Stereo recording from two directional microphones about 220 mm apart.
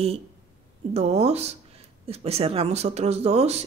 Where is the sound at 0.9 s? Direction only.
30° right (ahead or behind).